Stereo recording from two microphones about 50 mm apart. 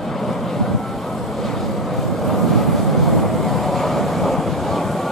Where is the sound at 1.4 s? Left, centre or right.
Centre.